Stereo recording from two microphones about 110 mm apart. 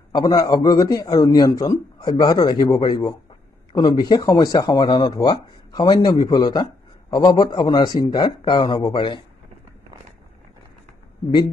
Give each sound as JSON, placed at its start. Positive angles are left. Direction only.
{"t": 0.1, "sound": "speech", "side_deg": 40}